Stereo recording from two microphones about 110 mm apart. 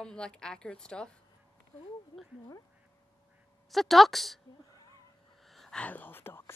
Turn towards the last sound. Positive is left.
turn(degrees=20)  # may be behind; listen again after turning